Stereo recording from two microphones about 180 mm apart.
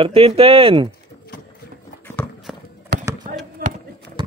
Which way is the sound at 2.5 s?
Centre (ahead or behind).